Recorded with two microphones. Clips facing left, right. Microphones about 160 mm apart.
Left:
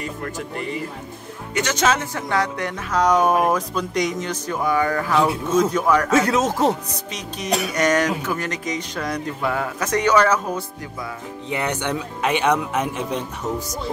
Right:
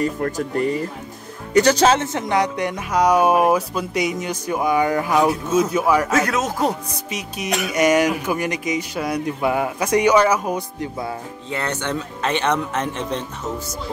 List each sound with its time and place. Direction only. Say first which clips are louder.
0.0 s speech: right 7 dB; 40° right (ahead or behind)
1.5 s music: right 6 dB; 35° right (ahead or behind); by 6.1 s 10° right (ahead or behind)
6.1 s speech: left 2 dB; 25° left (ahead or behind)
7.1 s music: even; 10° right (ahead or behind)
11.5 s speech: even; 15° left (ahead or behind)